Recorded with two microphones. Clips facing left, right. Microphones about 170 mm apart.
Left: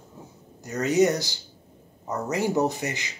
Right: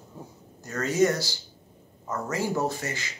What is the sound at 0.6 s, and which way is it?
Speech, 20° left (ahead or behind).